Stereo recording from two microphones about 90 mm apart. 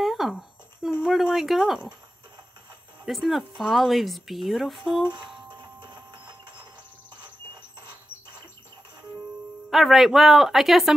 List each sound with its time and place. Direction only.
0.0 s a sound: centre (ahead or behind)
1.0 s speech: 5° right (ahead or behind)
3.1 s speech: centre (ahead or behind)
5.6 s music: 55° right (ahead or behind)
9.7 s speech: centre (ahead or behind)